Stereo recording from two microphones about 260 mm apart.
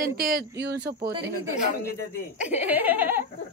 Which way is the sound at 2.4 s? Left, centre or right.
Centre.